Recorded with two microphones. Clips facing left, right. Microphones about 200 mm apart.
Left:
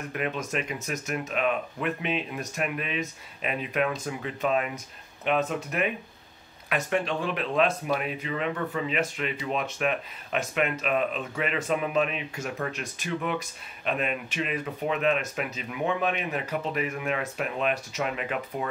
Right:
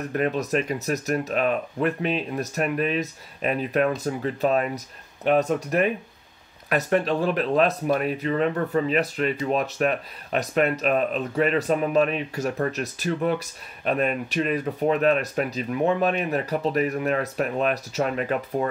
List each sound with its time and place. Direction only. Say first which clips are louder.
0.0 s speech: right 6 dB; 40° right (ahead or behind)